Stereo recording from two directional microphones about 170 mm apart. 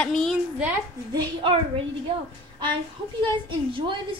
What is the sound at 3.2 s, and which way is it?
Speech, 30° right (ahead or behind).